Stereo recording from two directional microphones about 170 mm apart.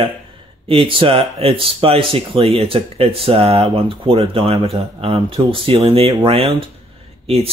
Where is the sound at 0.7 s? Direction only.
30° right (ahead or behind).